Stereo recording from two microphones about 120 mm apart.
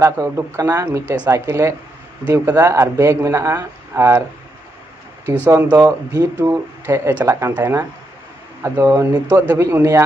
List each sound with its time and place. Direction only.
0.0 s speech: 25° right (ahead or behind)
5.5 s speech: 15° right (ahead or behind)
5.8 s speech: 30° right (ahead or behind)